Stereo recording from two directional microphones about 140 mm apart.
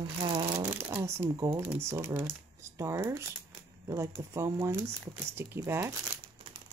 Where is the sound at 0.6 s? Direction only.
15° right (ahead or behind).